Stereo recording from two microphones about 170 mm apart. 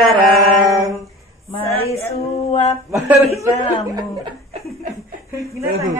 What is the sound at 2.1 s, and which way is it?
Male singing, 40° left (ahead or behind).